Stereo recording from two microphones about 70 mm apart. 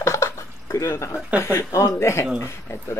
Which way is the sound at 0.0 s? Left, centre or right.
Left.